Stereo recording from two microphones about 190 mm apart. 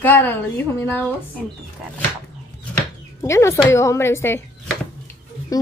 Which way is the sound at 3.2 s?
15° left (ahead or behind).